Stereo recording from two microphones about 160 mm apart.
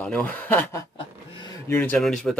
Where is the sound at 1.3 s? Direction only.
30° left (ahead or behind).